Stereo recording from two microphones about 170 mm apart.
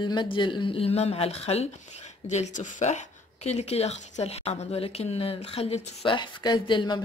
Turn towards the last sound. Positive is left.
turn(degrees=25)  # may be behind; listen again after turning